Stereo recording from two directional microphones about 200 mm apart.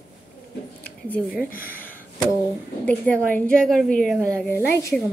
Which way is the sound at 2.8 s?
5° left (ahead or behind).